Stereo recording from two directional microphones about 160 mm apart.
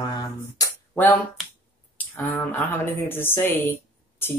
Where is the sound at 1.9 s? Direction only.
10° left (ahead or behind).